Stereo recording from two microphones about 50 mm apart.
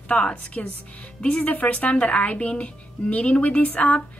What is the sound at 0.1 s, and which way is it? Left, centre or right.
Speech, centre.